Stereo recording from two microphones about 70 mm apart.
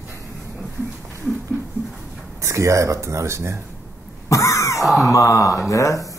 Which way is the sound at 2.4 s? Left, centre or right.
Right.